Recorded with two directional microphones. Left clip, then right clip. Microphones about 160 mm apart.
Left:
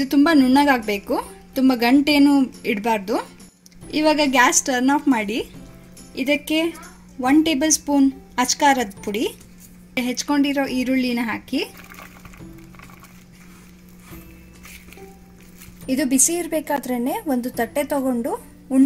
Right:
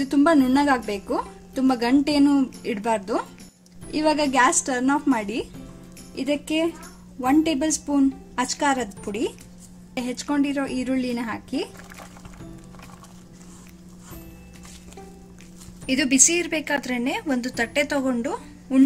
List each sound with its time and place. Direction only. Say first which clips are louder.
0.0 s a woman's voice: left 2 dB; 35° left (ahead or behind)
15.9 s a woman's voice: right 1 dB; 35° left (ahead or behind)
17.9 s a woman's voice: left 2 dB; 25° left (ahead or behind)